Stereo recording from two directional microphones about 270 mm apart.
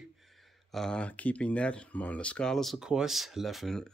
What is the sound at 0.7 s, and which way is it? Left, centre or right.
Speech, centre.